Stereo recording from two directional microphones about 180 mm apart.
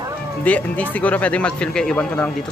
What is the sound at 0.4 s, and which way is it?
Speech, 10° left (ahead or behind).